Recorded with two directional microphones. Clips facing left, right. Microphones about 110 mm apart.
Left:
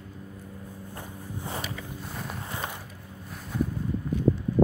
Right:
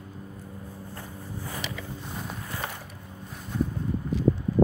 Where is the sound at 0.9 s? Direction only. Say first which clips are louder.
Left 1 dB; 20° left (ahead or behind).